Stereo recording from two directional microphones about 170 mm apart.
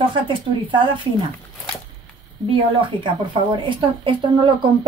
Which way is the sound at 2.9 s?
30° right (ahead or behind).